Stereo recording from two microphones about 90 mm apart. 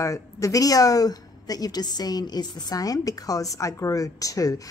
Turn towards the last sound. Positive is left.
turn(degrees=40)  # may be behind; listen again after turning